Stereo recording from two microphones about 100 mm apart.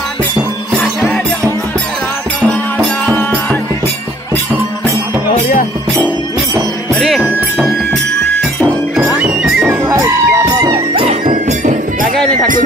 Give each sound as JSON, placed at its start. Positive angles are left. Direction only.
{"t": 7.0, "sound": "music", "side_deg": 0}
{"t": 9.6, "sound": "music", "side_deg": -25}
{"t": 11.0, "sound": "music", "side_deg": -60}